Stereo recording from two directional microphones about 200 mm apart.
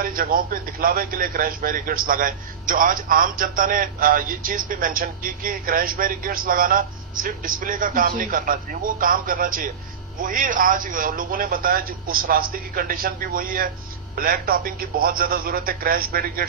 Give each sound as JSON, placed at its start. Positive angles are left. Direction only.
{"t": 0.0, "sound": "a man's voice", "side_deg": -45}